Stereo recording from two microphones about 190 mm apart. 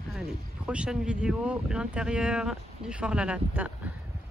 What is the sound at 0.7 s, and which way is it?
Speech, 5° right (ahead or behind).